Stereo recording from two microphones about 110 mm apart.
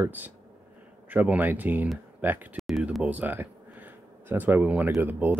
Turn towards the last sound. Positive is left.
turn(degrees=-15)  # may be behind; listen again after turning